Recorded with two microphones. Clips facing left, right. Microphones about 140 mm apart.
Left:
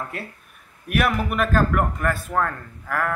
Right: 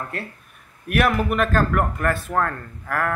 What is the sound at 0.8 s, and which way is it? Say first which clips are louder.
A man's voice: right 2 dB; centre (ahead or behind).